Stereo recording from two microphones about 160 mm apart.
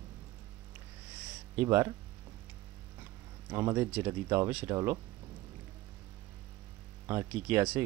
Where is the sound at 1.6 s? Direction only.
15° right (ahead or behind).